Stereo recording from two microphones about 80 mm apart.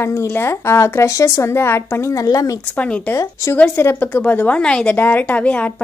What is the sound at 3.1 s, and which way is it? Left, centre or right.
A woman's voice, left.